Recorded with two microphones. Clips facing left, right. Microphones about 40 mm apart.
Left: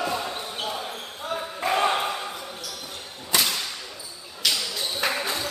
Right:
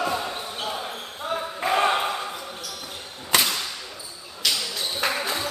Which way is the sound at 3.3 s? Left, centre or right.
Right.